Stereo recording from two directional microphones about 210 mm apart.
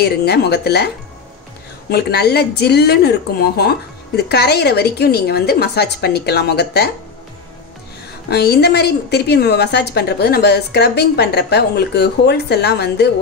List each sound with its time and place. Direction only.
0.0 s a woman's voice: 50° left (ahead or behind)
8.3 s a woman's voice: 50° left (ahead or behind)